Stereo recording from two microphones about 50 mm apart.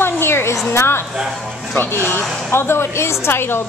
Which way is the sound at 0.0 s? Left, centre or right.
Left.